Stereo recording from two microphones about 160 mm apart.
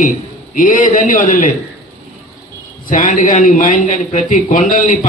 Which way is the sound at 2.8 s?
55° left (ahead or behind).